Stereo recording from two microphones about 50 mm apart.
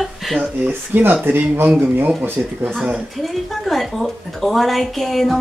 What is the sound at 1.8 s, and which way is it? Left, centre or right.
Speech, right.